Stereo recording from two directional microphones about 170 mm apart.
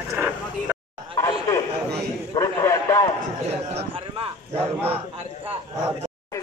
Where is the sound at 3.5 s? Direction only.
35° right (ahead or behind).